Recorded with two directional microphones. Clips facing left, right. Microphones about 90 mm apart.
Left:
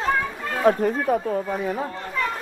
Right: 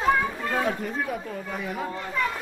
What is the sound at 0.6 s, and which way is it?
Speech, 40° left (ahead or behind).